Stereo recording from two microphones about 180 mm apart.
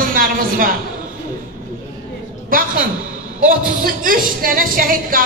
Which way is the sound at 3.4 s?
50° right (ahead or behind).